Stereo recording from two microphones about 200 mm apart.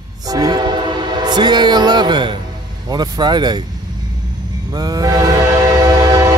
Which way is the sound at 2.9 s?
20° right (ahead or behind).